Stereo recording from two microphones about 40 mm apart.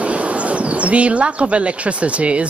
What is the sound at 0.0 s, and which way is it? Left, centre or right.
Speech, right.